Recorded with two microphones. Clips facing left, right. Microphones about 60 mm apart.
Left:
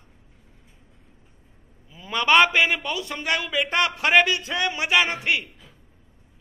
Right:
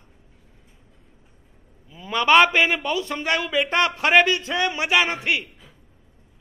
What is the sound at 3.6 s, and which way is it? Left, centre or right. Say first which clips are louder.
Music: right 1 dB; centre.